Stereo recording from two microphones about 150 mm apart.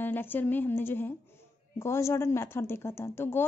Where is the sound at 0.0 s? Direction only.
15° left (ahead or behind).